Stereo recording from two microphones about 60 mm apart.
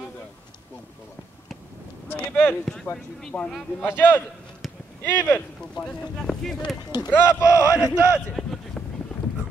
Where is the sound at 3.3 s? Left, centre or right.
Left.